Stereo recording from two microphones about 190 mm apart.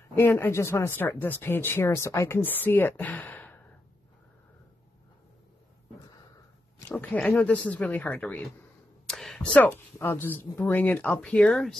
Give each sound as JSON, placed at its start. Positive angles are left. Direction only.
{"t": 0.1, "sound": "speech", "side_deg": 10}
{"t": 6.9, "sound": "speech", "side_deg": 10}